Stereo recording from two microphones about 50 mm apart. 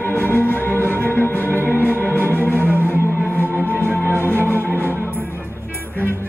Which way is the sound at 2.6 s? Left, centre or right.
Right.